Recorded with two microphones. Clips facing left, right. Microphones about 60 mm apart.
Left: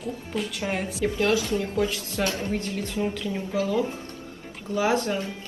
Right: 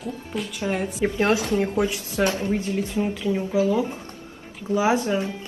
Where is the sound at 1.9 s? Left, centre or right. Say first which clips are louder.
Right 4 dB; centre.